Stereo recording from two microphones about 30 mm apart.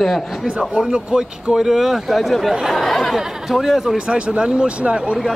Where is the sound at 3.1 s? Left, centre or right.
Centre.